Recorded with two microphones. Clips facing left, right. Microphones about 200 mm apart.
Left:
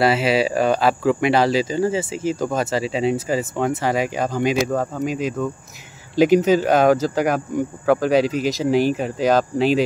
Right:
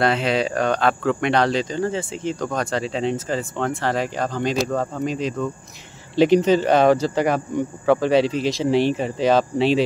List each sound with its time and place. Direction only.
0.0 s speech: 5° left (ahead or behind)